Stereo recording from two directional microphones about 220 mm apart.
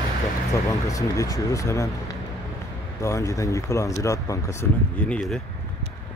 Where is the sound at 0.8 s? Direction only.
15° left (ahead or behind).